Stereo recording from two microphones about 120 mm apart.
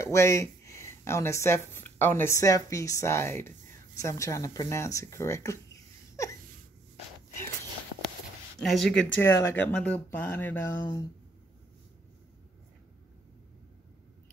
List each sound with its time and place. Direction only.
0.0 s speech: 25° left (ahead or behind)
8.5 s speech: centre (ahead or behind)
9.1 s speech: 20° left (ahead or behind)
10.8 s speech: 40° left (ahead or behind)